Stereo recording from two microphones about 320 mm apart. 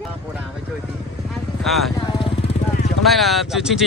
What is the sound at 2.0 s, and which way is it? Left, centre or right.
Vehicle, centre.